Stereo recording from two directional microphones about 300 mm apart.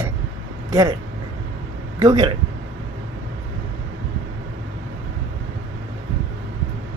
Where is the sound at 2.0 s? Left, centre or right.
Centre.